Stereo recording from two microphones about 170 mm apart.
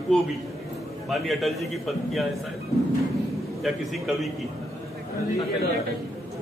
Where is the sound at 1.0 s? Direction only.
Centre (ahead or behind).